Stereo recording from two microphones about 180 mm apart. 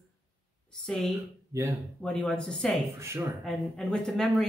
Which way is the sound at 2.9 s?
15° right (ahead or behind).